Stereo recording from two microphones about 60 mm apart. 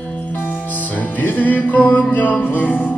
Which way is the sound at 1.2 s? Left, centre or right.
Left.